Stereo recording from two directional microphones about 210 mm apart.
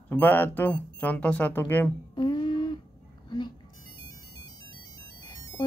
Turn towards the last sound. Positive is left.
turn(degrees=20)  # may be behind; listen again after turning